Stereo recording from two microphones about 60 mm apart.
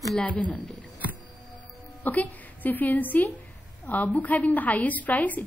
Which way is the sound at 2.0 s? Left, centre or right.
Left.